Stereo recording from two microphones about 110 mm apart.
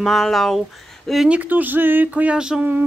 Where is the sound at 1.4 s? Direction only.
15° right (ahead or behind).